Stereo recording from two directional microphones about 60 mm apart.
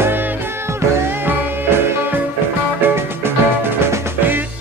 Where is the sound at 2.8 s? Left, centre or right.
Right.